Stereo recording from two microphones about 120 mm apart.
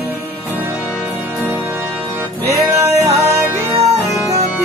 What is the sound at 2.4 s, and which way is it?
Music, 25° right (ahead or behind).